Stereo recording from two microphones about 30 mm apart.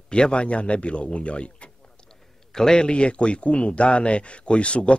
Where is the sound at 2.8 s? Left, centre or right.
Left.